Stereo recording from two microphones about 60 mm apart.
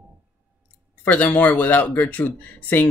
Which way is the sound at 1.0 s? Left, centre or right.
Left.